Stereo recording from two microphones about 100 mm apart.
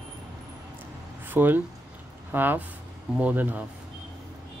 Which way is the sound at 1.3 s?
20° right (ahead or behind).